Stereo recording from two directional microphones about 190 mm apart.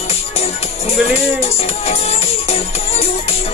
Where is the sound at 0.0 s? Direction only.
35° left (ahead or behind).